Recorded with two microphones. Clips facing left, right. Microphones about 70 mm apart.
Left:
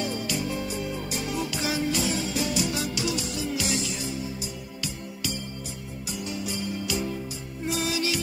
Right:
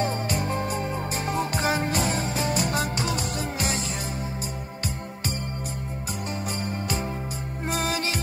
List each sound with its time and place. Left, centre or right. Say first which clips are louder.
0.0 s music: right 3 dB; right
6.2 s music: even; right